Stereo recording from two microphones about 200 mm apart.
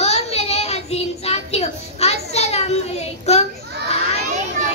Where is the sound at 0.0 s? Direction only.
30° left (ahead or behind).